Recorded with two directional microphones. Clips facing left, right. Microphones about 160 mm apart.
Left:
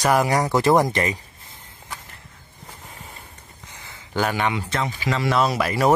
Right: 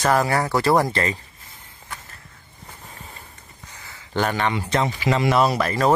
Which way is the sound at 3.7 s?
20° left (ahead or behind).